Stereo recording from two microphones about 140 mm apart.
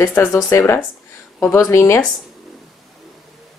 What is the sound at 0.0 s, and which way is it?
Speech, 15° left (ahead or behind).